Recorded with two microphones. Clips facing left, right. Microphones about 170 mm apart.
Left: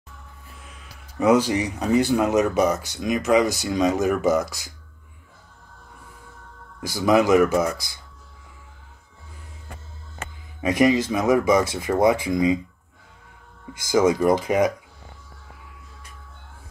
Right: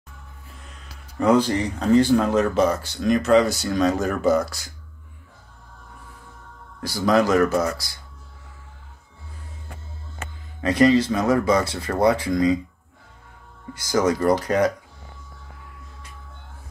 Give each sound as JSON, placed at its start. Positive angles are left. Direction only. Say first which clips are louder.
{"t": 0.6, "sound": "speech", "louder": "even", "side_deg": 5}
{"t": 6.9, "sound": "speech", "louder": "left 1 dB", "side_deg": 15}
{"t": 10.6, "sound": "speech", "louder": "right 2 dB", "side_deg": 15}
{"t": 13.9, "sound": "speech", "louder": "left 1 dB", "side_deg": 15}